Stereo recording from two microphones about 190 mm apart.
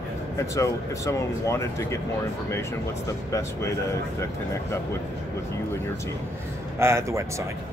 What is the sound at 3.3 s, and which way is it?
Speech, 15° left (ahead or behind).